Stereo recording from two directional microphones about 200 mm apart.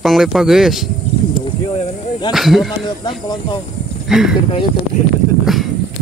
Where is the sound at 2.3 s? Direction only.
Centre (ahead or behind).